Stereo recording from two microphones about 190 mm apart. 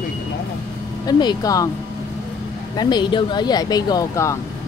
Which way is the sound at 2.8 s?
25° left (ahead or behind).